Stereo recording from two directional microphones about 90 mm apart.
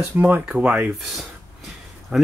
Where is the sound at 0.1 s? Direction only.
15° right (ahead or behind).